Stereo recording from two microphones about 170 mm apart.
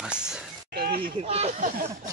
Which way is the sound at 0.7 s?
70° right (ahead or behind).